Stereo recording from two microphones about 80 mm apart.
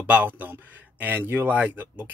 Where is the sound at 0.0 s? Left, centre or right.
Right.